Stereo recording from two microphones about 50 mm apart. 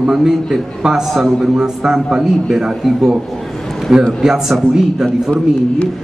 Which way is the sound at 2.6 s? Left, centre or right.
Centre.